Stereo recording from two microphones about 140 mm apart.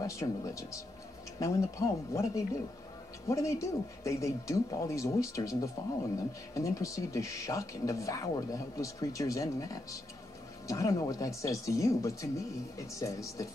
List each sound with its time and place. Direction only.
0.0 s speech: 25° left (ahead or behind)